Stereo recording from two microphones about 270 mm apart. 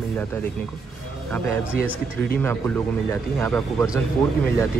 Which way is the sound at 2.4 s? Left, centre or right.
Centre.